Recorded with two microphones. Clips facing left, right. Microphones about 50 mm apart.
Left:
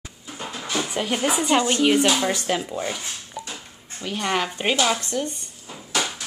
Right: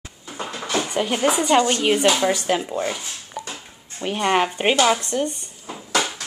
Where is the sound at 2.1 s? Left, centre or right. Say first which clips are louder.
Right 3 dB; centre.